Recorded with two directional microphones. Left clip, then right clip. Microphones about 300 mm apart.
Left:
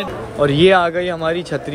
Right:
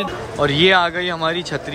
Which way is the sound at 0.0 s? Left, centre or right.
Centre.